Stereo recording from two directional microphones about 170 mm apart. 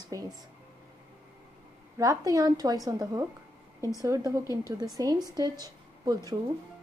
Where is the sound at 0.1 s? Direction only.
20° right (ahead or behind).